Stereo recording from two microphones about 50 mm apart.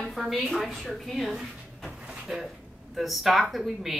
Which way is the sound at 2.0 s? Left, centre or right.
Centre.